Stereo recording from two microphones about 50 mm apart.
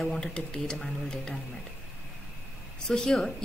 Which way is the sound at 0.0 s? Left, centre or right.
Centre.